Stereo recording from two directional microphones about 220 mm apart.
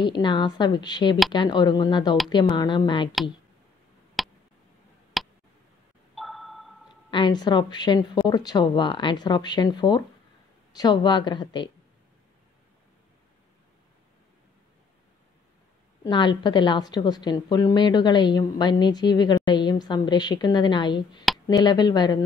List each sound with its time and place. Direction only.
0.0 s a woman's voice: 20° left (ahead or behind)
4.2 s a sound: centre (ahead or behind)
5.2 s tick: centre (ahead or behind)
6.1 s sonar: centre (ahead or behind)
7.1 s a woman's voice: 20° left (ahead or behind)
16.0 s a woman's voice: 20° left (ahead or behind)